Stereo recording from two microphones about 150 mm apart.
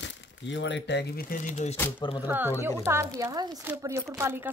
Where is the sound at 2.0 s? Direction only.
30° left (ahead or behind).